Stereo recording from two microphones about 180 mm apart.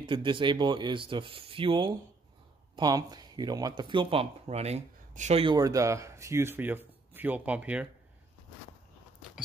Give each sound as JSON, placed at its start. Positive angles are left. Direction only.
{"t": 0.0, "sound": "speech", "side_deg": -30}